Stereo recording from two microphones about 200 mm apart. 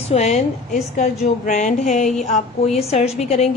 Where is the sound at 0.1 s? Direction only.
30° left (ahead or behind).